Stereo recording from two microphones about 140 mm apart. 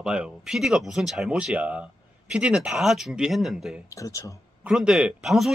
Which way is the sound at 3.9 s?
25° left (ahead or behind).